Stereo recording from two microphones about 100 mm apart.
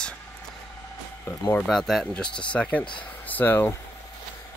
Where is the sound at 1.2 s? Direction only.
25° left (ahead or behind).